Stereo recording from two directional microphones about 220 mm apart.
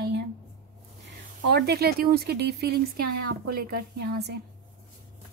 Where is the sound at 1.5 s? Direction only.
45° right (ahead or behind).